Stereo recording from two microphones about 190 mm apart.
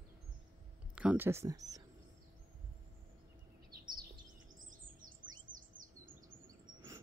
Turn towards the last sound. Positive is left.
turn(degrees=-45)  # may be behind; listen again after turning